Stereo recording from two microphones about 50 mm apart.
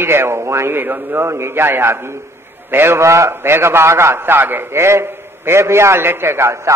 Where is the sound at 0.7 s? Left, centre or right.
Right.